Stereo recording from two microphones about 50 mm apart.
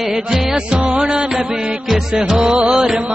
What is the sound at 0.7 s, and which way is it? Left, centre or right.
Music, right.